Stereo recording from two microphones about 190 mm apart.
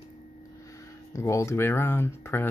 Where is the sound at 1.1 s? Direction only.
15° left (ahead or behind).